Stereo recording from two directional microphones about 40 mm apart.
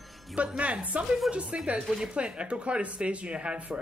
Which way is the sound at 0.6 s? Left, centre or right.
Right.